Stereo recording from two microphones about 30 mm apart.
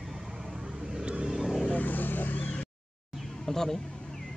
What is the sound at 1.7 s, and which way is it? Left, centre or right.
Vehicle, left.